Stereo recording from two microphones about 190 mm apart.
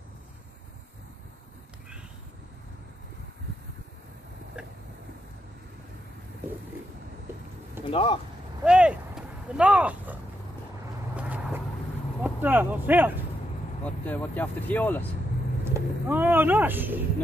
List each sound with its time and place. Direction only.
4.6 s vehicle: 5° right (ahead or behind)
7.9 s speech: 30° left (ahead or behind)
8.6 s a sound: 5° right (ahead or behind)
11.1 s vehicle: 10° right (ahead or behind)
12.2 s speech: 10° right (ahead or behind)
13.8 s speech: 10° left (ahead or behind)
15.6 s speech: 10° right (ahead or behind)